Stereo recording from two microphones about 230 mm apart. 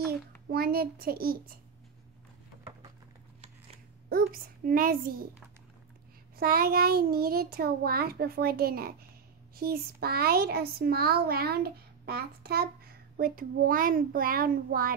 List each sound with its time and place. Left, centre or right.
0.5 s a child's voice: right
4.1 s a child's voice: right
6.3 s a child's voice: right